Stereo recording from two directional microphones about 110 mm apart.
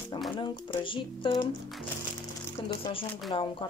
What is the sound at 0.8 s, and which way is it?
Speech, 50° left (ahead or behind).